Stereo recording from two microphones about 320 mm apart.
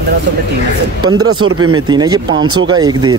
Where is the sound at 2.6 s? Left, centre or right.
Centre.